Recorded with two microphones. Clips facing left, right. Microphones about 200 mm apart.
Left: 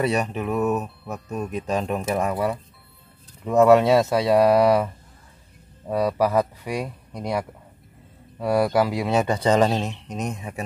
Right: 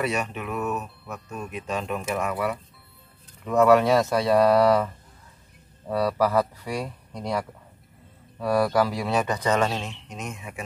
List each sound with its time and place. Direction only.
0.0 s speech: 35° left (ahead or behind)